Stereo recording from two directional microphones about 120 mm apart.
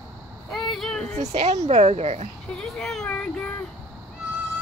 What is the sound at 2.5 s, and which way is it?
Speech, 5° left (ahead or behind).